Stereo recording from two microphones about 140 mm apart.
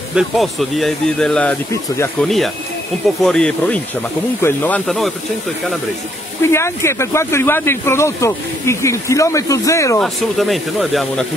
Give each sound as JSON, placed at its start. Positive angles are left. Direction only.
{"t": 0.1, "sound": "speech", "side_deg": 0}
{"t": 6.4, "sound": "speech", "side_deg": 20}
{"t": 9.9, "sound": "speech", "side_deg": 0}